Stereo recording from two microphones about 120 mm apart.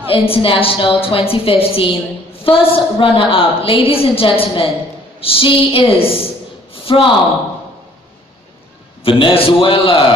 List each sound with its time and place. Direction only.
0.1 s a woman's voice: 50° left (ahead or behind)
6.7 s a sound: 50° left (ahead or behind)
9.0 s a woman's voice: 50° left (ahead or behind)